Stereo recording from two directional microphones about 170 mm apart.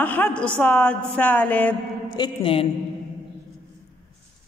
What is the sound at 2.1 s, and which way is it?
Speech, 30° left (ahead or behind).